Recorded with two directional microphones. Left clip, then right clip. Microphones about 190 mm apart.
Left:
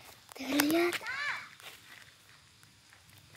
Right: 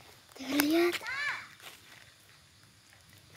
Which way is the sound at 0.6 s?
5° left (ahead or behind).